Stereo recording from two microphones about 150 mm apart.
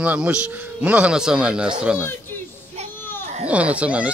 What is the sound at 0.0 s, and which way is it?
Speech, 10° right (ahead or behind).